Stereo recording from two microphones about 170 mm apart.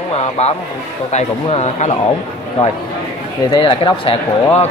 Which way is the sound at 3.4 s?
30° left (ahead or behind).